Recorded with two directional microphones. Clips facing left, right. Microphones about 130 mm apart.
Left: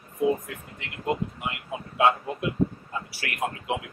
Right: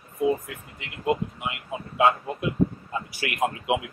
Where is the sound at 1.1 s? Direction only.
5° right (ahead or behind).